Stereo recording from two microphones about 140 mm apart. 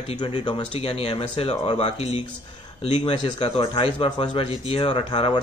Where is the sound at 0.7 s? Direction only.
45° left (ahead or behind).